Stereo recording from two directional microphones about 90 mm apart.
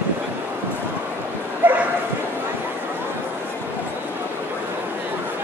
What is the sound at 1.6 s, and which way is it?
Bow-wow, 20° right (ahead or behind).